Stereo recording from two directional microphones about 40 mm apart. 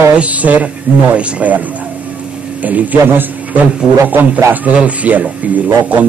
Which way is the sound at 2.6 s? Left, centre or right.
Right.